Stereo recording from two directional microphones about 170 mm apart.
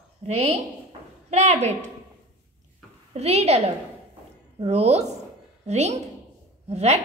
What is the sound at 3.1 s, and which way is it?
A woman's voice, 40° right (ahead or behind).